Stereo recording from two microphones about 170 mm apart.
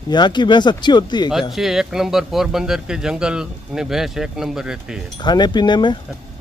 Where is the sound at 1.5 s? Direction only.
Centre (ahead or behind).